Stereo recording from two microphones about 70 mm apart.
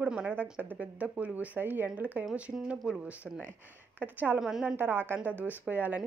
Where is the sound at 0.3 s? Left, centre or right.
Right.